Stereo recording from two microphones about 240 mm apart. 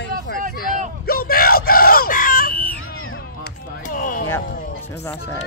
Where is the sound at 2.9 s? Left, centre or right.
Left.